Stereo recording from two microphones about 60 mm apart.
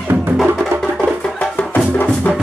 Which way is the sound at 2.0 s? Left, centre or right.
Left.